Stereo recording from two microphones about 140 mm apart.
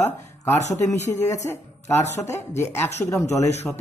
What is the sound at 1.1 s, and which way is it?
A woman's voice, 20° left (ahead or behind).